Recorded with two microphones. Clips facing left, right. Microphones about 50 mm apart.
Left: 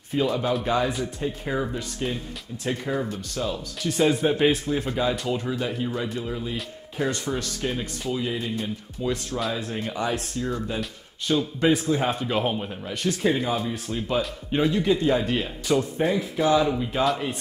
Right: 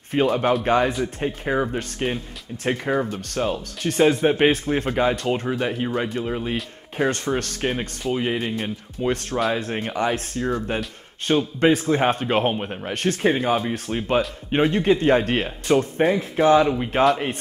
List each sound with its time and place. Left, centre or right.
0.1 s a man's voice: right
2.9 s speech: right
3.2 s a man's voice: right